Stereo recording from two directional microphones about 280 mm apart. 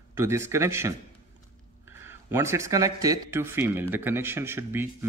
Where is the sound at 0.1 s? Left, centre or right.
Centre.